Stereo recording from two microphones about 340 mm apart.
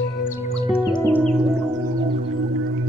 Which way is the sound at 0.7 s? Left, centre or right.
Centre.